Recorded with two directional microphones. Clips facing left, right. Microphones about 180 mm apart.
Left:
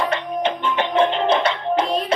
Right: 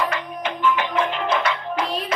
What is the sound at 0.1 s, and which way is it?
Music, 30° left (ahead or behind).